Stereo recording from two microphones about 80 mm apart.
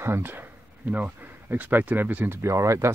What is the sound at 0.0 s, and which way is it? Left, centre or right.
Speech, right.